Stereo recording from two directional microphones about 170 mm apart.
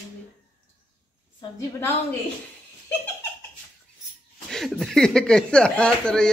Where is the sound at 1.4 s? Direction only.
15° left (ahead or behind).